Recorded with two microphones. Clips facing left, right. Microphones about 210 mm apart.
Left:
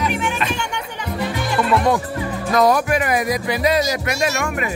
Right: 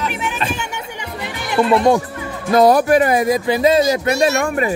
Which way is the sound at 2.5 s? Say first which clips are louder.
Right 5 dB; 30° right (ahead or behind).